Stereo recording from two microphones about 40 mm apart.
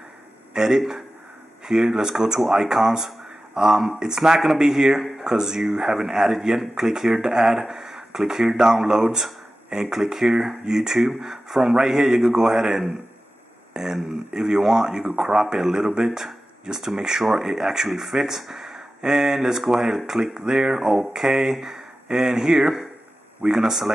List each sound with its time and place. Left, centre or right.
0.5 s a man's voice: centre